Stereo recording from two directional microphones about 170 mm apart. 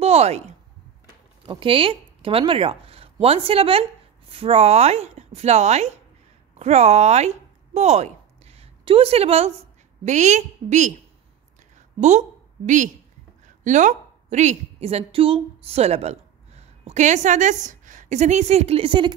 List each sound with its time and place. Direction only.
0.0 s a sound: 35° right (ahead or behind)
1.4 s a woman's voice: 30° right (ahead or behind)
12.0 s a woman's voice: 45° right (ahead or behind)